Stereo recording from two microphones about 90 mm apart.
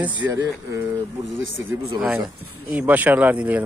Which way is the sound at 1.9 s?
15° right (ahead or behind).